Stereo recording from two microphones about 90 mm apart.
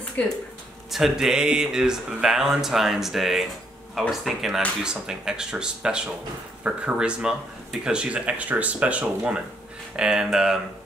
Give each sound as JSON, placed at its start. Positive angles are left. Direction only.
{"t": 0.2, "sound": "speech", "side_deg": 15}
{"t": 0.9, "sound": "speech", "side_deg": -5}